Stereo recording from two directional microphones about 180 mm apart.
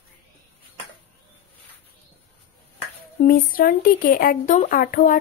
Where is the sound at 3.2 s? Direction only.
50° left (ahead or behind).